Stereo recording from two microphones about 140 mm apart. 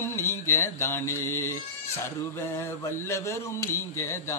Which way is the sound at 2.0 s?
20° left (ahead or behind).